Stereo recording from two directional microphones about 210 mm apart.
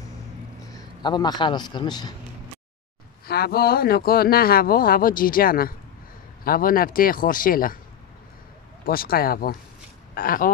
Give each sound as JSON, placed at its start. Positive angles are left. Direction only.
{"t": 1.0, "sound": "a man's voice", "side_deg": 20}
{"t": 3.3, "sound": "speech", "side_deg": 50}
{"t": 8.8, "sound": "speech", "side_deg": 45}